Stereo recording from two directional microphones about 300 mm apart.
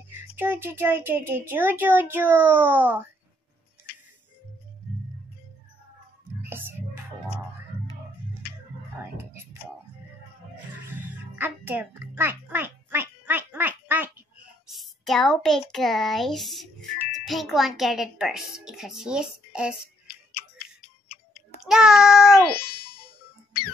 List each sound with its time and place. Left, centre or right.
0.4 s a child's voice: centre
6.4 s music: centre
7.3 s music: centre
9.1 s a sound: centre
10.9 s music: centre
14.7 s a sound: centre
15.7 s a child's voice: centre
21.6 s a child's voice: centre
22.6 s music: left